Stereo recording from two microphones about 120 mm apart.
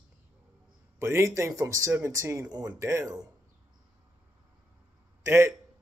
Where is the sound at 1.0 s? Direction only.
25° right (ahead or behind).